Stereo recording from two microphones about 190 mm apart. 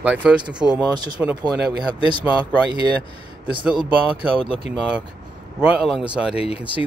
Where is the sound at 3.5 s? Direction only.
5° right (ahead or behind).